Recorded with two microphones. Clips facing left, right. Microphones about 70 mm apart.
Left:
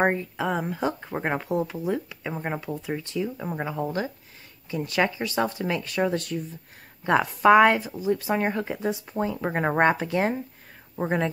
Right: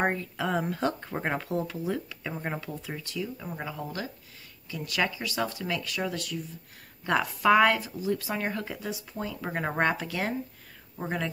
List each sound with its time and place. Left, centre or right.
0.0 s speech: left
0.5 s speech: centre; by 11.2 s left